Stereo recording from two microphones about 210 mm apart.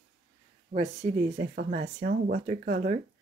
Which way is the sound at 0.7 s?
30° right (ahead or behind).